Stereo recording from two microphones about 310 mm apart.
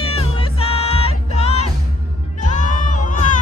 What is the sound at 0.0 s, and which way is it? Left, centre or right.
Music, centre.